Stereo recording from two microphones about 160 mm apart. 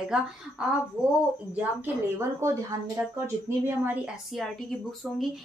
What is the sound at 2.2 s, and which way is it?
Speech, 15° right (ahead or behind).